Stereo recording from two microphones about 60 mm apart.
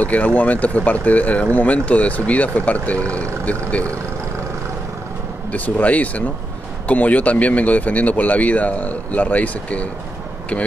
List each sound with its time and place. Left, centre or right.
0.0 s speech: left
5.5 s speech: left